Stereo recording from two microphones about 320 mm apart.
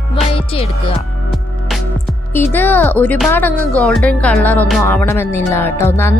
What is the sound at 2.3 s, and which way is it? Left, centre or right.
Speech, centre.